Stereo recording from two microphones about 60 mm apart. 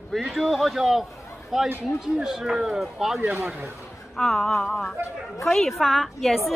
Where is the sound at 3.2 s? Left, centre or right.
Right.